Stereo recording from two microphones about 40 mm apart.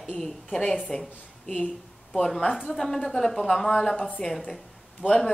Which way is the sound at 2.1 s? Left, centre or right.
Centre.